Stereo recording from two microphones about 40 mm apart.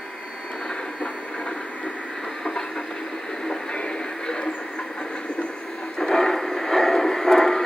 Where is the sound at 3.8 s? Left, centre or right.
Left.